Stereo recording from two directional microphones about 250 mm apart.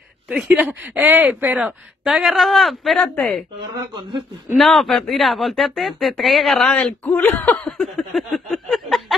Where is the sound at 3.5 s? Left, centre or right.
Centre.